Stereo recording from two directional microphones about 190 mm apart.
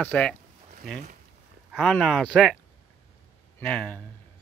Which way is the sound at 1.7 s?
5° left (ahead or behind).